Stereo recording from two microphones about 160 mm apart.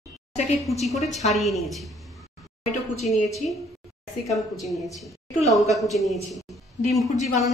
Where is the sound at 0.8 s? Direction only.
Centre (ahead or behind).